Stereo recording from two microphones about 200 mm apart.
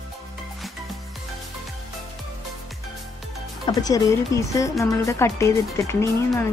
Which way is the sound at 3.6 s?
20° left (ahead or behind).